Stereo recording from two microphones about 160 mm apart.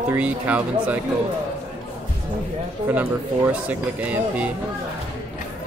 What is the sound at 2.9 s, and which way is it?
Speech, 10° right (ahead or behind).